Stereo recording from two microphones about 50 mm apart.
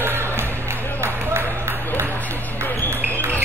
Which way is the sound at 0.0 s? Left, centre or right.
Right.